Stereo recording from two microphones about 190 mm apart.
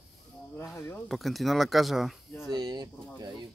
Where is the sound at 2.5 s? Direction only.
20° right (ahead or behind).